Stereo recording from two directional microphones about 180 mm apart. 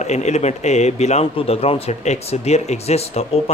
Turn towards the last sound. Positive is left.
turn(degrees=35)  # may be behind; listen again after turning